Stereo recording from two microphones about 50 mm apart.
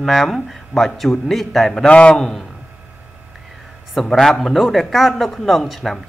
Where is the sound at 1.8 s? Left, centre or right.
Left.